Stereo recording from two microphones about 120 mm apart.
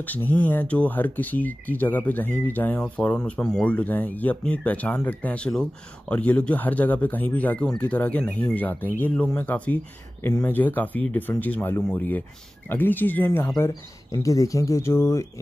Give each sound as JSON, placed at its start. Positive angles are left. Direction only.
{"t": 0.0, "sound": "speech", "side_deg": 15}
{"t": 13.7, "sound": "speech", "side_deg": 30}